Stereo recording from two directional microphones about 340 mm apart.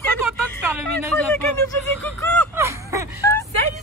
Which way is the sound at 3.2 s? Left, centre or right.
Centre.